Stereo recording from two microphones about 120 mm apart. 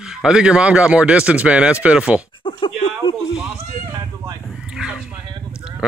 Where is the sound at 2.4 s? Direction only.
45° left (ahead or behind).